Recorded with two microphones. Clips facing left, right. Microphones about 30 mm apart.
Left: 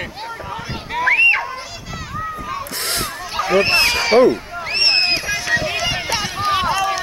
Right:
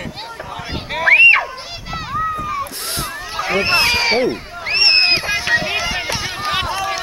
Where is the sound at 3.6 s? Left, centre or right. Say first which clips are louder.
Right 1 dB; centre.